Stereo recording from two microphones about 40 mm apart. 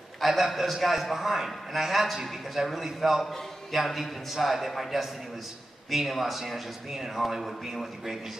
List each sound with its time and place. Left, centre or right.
0.2 s a man's voice: centre